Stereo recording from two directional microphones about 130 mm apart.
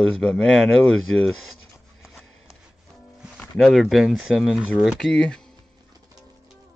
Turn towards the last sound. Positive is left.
turn(degrees=5)  # may be behind; listen again after turning